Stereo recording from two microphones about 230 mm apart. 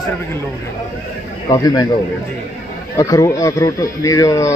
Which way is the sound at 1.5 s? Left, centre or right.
Centre.